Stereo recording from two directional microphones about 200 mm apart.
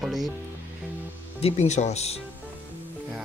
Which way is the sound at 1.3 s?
30° left (ahead or behind).